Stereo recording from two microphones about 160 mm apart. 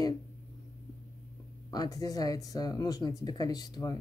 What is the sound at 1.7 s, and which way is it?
Speech, 25° left (ahead or behind).